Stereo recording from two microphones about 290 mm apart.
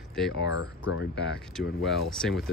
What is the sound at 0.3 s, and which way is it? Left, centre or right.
Speech, left.